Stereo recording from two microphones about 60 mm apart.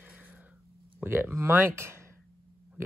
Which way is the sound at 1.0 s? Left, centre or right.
Right.